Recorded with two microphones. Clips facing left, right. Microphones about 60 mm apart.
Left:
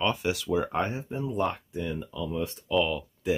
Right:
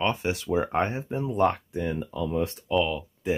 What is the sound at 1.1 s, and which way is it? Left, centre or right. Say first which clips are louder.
Speech: right 5 dB; right.